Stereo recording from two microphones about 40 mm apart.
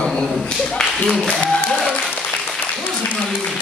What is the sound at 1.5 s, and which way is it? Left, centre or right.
Applause, centre.